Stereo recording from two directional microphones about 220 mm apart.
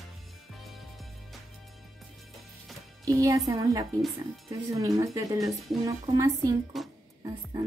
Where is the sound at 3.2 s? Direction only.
15° right (ahead or behind).